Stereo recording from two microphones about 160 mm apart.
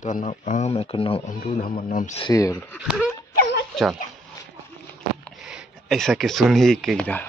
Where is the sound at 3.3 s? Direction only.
90° left.